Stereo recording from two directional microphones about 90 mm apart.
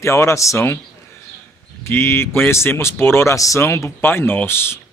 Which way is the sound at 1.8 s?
25° left (ahead or behind).